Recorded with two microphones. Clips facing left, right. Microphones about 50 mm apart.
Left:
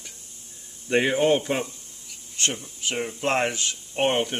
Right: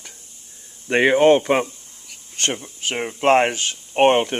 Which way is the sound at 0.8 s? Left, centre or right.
Right.